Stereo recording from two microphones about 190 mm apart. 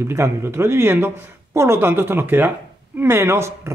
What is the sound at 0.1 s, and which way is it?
Speech, 15° right (ahead or behind).